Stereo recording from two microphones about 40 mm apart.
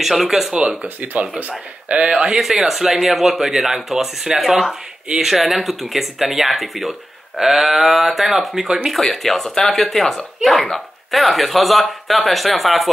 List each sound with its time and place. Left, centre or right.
0.0 s speech: centre
0.8 s speech: right
1.9 s a man's voice: right
2.3 s speech: centre